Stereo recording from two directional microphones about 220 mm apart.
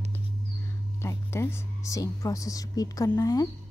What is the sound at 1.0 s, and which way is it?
Speech, 10° left (ahead or behind).